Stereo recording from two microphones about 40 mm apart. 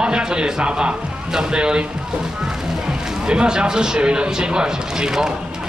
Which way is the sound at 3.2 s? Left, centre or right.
Centre.